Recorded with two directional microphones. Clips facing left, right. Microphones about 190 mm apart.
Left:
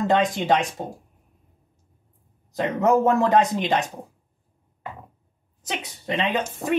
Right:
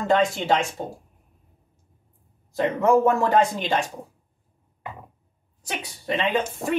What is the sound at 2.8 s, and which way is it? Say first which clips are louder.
Speech: even; 20° left (ahead or behind).